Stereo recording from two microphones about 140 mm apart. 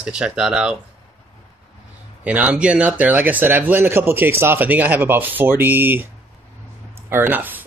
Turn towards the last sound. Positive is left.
turn(degrees=-15)  # may be behind; listen again after turning